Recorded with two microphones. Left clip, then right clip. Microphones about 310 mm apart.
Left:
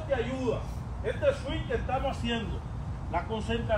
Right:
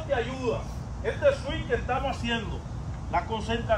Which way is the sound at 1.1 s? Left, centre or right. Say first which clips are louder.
Right 2 dB; centre.